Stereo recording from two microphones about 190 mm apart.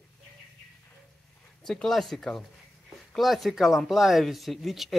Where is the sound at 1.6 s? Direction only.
5° left (ahead or behind).